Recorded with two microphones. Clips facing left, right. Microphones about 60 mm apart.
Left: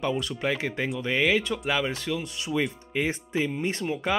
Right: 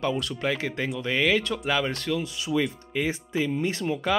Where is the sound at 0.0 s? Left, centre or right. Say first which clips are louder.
Right 1 dB; centre.